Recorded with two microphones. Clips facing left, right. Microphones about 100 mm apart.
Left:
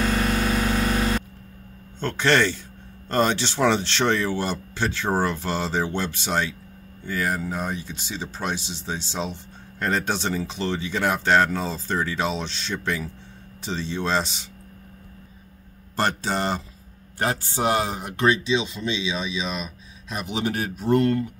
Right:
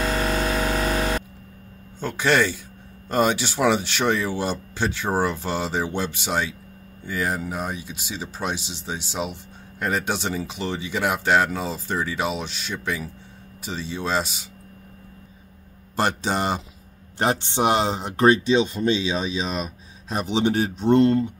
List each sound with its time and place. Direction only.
2.0 s speech: 10° right (ahead or behind)
16.0 s speech: 15° right (ahead or behind)
18.2 s speech: 45° right (ahead or behind); by 21.3 s 25° right (ahead or behind)